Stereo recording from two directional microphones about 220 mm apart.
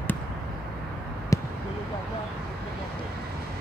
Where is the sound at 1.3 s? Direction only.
15° left (ahead or behind).